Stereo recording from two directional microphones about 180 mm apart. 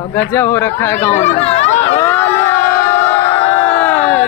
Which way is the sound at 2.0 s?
10° left (ahead or behind).